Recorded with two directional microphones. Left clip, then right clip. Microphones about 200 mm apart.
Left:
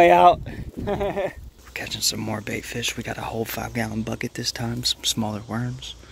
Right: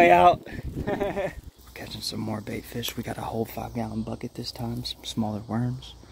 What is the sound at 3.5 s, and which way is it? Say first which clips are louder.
Speech: left 5 dB; centre (ahead or behind).